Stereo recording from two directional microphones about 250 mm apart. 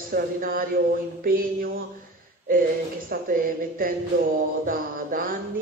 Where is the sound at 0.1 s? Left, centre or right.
Right.